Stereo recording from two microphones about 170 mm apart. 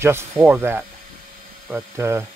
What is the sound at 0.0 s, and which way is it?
Speech, 15° right (ahead or behind).